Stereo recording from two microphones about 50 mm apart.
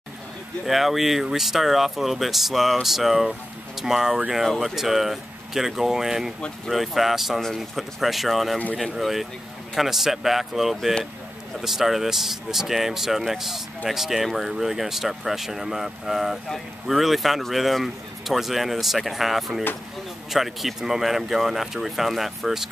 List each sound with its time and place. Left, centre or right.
0.7 s speech: centre